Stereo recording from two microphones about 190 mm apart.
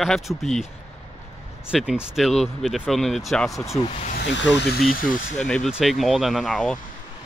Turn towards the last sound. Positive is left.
turn(degrees=5)  # may be behind; listen again after turning